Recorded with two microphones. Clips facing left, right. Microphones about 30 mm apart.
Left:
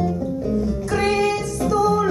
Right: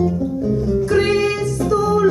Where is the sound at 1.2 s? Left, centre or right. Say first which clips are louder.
Right 2 dB; right.